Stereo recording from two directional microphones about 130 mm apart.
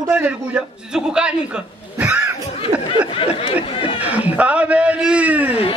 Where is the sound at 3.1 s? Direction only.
50° left (ahead or behind).